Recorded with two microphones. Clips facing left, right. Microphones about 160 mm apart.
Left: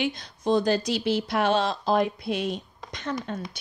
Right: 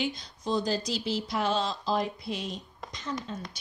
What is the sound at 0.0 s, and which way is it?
Speech, 60° left (ahead or behind).